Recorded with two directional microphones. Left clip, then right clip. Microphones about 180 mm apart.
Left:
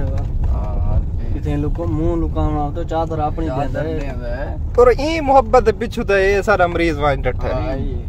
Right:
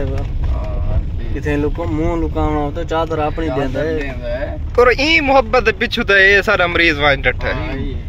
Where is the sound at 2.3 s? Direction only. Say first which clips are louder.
Right 3 dB; 45° right (ahead or behind).